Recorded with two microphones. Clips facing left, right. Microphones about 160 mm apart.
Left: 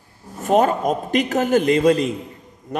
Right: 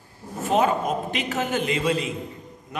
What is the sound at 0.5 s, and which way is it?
A man's voice, 45° left (ahead or behind).